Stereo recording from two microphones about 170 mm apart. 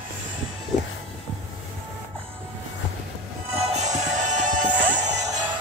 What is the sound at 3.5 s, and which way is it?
Music, 40° right (ahead or behind).